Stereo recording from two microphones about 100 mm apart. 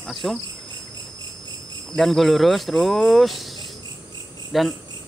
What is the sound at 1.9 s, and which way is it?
Speech, centre (ahead or behind).